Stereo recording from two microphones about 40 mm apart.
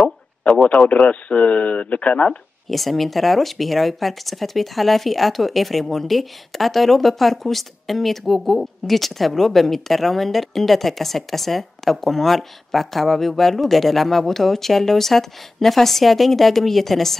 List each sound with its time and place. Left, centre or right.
0.4 s speech: left
2.7 s speech: centre